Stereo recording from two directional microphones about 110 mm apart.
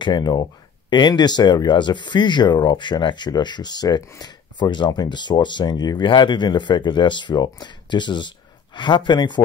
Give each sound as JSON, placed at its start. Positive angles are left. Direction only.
{"t": 0.0, "sound": "speech", "side_deg": 40}